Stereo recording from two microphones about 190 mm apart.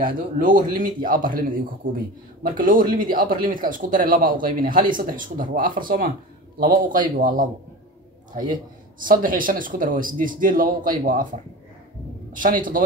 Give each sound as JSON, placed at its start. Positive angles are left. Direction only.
{"t": 0.4, "sound": "speech", "side_deg": -45}
{"t": 9.0, "sound": "speech", "side_deg": -45}
{"t": 12.3, "sound": "speech", "side_deg": -45}